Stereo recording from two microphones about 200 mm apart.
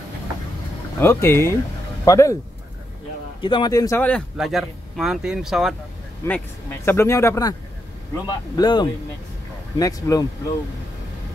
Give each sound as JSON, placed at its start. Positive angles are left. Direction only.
{"t": 1.0, "sound": "speech", "side_deg": 10}
{"t": 3.3, "sound": "speech", "side_deg": 25}
{"t": 6.2, "sound": "speech", "side_deg": 10}